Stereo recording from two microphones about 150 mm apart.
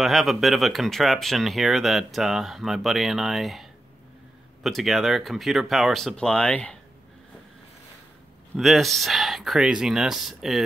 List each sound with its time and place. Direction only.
0.0 s speech: centre (ahead or behind)
4.6 s speech: centre (ahead or behind)
8.5 s speech: centre (ahead or behind)